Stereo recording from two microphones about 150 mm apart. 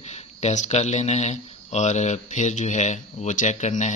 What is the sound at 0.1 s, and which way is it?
Speech, 50° left (ahead or behind).